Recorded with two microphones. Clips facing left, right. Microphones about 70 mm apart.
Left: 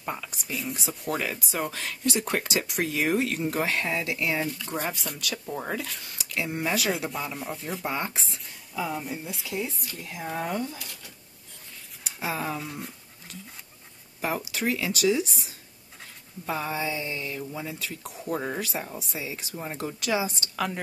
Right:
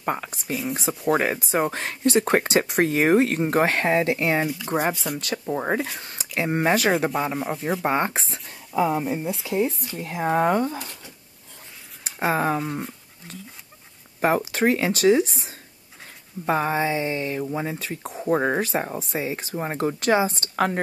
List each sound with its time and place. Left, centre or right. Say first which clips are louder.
0.0 s speech: right 7 dB; right
4.9 s speech: right 7 dB; centre
5.5 s speech: right 9 dB; right
12.0 s speech: right 8 dB; right
14.2 s speech: right 8 dB; right